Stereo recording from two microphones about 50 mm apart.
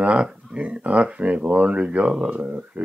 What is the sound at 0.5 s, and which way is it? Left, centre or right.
Speech, right.